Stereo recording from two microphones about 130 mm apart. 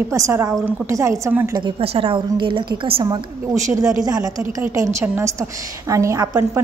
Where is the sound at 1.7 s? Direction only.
45° right (ahead or behind).